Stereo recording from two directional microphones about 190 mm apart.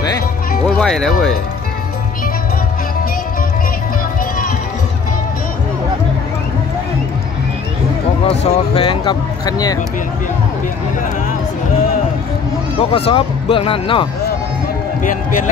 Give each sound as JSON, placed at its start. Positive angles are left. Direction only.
{"t": 0.7, "sound": "speech", "side_deg": 5}
{"t": 8.5, "sound": "speech", "side_deg": 30}
{"t": 12.7, "sound": "speech", "side_deg": 30}
{"t": 15.0, "sound": "speech", "side_deg": 45}